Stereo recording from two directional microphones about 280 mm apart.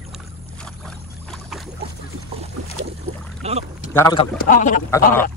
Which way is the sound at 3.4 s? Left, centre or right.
Right.